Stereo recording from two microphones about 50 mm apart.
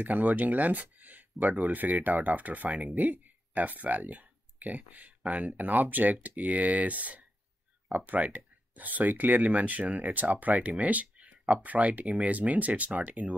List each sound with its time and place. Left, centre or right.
0.0 s speech: right